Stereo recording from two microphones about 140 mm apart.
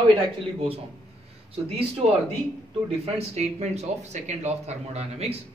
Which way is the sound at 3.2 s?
50° right (ahead or behind).